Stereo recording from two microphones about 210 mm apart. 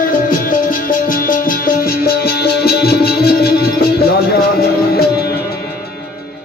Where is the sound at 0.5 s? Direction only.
40° left (ahead or behind).